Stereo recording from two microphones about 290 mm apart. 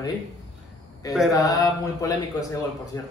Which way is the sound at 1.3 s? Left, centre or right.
Centre.